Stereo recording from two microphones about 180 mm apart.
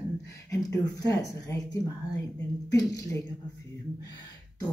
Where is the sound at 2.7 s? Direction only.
20° left (ahead or behind).